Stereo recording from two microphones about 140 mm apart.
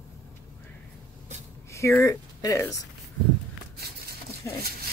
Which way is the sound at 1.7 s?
20° left (ahead or behind).